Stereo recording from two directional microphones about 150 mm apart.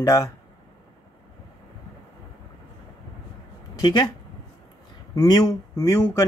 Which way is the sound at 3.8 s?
25° left (ahead or behind).